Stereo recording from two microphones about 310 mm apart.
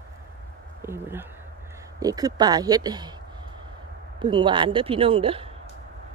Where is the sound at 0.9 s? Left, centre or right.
Centre.